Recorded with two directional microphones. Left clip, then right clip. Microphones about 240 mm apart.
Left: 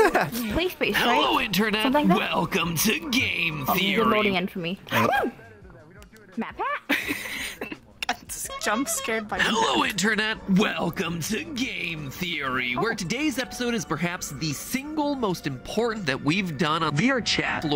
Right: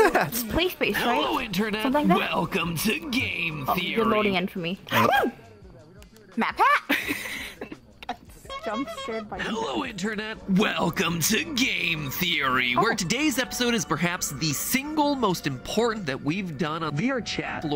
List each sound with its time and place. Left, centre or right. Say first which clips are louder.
0.0 s a sound: even; centre
0.9 s speech: left 7 dB; centre
2.0 s speech: right 3 dB; centre
6.4 s speech: right 9 dB; right
6.9 s a sound: even; centre
8.7 s speech: left 5 dB; left
9.4 s speech: left 8 dB; centre
10.5 s speech: right 1 dB; centre
16.0 s speech: left 4 dB; centre